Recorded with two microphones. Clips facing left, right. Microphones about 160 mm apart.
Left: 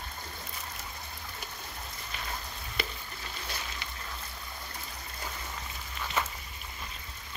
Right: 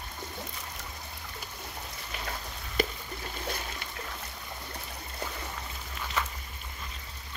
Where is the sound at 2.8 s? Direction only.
45° right (ahead or behind).